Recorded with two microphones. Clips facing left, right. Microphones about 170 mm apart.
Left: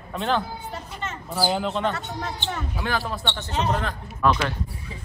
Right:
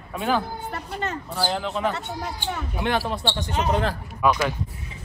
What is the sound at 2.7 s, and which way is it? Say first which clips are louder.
A man's voice: right 5 dB; 20° right (ahead or behind).